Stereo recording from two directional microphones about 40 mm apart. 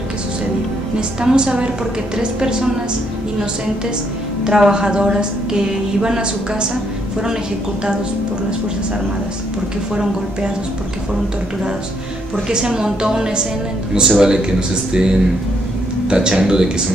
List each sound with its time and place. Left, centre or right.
1.2 s a woman's voice: right
4.5 s a woman's voice: centre
12.4 s a woman's voice: centre